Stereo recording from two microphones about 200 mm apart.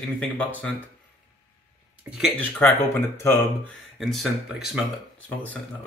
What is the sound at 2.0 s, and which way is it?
Speech, centre (ahead or behind).